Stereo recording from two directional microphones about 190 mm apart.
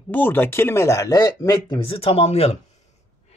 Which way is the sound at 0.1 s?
10° left (ahead or behind).